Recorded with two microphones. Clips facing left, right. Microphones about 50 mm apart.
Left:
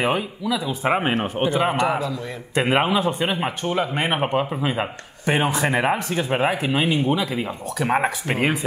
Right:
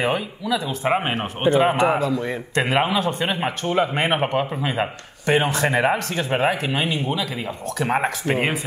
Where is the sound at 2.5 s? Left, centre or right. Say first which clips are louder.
Left 1 dB; centre.